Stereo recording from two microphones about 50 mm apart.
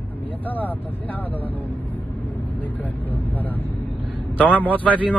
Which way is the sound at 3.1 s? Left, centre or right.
Left.